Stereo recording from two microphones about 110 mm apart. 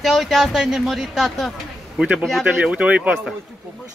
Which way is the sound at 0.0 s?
Centre (ahead or behind).